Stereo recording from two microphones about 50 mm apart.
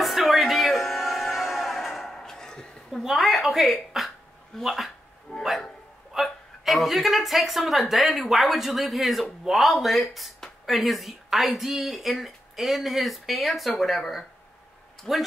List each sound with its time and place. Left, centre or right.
0.0 s music: centre
2.9 s a sound: centre
4.6 s speech: centre
5.3 s dog: left
6.1 s a man's voice: centre